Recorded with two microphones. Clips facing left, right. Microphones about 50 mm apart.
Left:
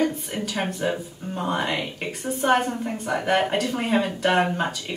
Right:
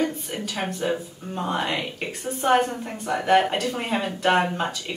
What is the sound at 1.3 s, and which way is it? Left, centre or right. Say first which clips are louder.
Speech: even; centre.